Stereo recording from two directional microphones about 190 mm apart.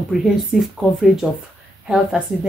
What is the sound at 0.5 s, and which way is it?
Speech, centre (ahead or behind).